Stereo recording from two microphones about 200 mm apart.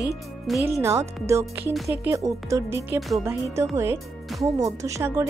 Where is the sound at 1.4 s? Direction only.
Centre (ahead or behind).